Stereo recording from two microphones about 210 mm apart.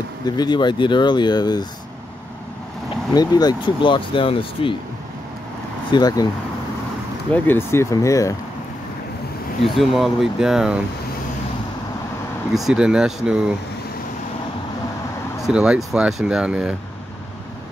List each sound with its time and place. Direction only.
0.2 s speech: 20° left (ahead or behind)
3.2 s speech: 20° left (ahead or behind)
5.9 s speech: 20° left (ahead or behind)
7.3 s speech: 10° left (ahead or behind)
9.8 s speech: centre (ahead or behind)
12.5 s speech: 5° right (ahead or behind)
15.4 s speech: 5° right (ahead or behind)